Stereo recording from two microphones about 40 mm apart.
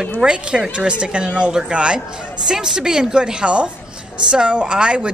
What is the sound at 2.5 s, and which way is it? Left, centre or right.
A woman's voice, centre.